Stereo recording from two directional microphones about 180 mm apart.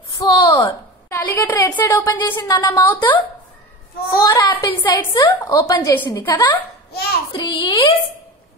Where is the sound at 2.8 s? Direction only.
10° left (ahead or behind).